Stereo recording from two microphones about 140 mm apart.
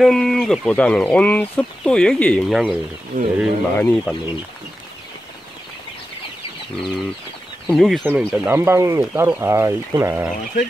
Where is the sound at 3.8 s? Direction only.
10° left (ahead or behind).